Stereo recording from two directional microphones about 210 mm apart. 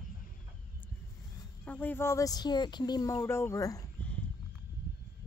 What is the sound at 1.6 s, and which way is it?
Speech, 10° left (ahead or behind).